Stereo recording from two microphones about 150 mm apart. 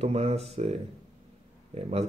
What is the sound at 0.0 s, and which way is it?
Speech, 40° right (ahead or behind).